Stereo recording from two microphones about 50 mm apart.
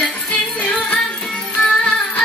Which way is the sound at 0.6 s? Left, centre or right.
Centre.